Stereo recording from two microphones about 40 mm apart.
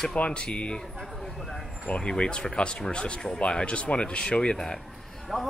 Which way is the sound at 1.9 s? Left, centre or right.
Left.